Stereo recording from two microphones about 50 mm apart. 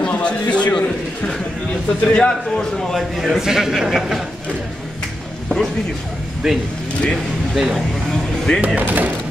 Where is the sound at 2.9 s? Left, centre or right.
Centre.